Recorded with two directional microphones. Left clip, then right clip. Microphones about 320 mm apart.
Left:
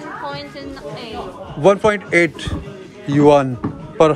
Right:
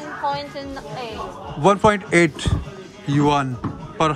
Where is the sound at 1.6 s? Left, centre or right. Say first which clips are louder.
Left 2 dB; centre.